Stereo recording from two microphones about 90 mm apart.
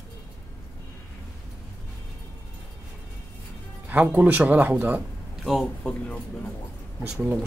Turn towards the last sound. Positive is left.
turn(degrees=-10)  # may be behind; listen again after turning